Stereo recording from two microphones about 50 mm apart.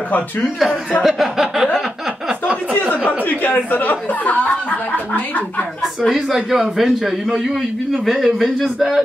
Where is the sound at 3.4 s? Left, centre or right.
Left.